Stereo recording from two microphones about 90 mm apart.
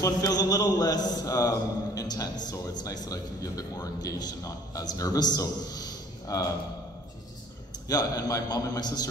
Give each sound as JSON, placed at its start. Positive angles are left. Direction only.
{"t": 0.0, "sound": "a man's voice", "side_deg": 45}
{"t": 7.9, "sound": "a man's voice", "side_deg": 45}